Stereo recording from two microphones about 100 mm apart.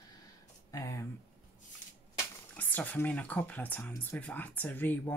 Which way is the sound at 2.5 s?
15° left (ahead or behind).